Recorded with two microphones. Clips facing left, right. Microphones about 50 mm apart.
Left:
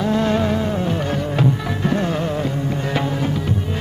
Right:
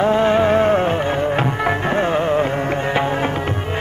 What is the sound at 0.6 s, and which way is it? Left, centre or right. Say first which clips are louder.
Music: right 6 dB; right.